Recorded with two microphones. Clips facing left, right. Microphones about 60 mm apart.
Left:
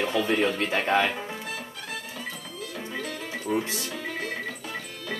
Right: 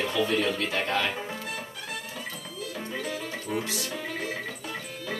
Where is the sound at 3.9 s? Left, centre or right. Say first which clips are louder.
Even; centre.